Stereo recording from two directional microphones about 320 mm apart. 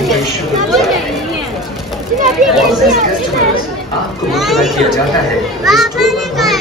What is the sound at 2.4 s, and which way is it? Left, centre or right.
Speech, right.